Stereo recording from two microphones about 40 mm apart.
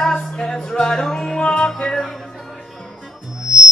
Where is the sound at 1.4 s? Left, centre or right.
Left.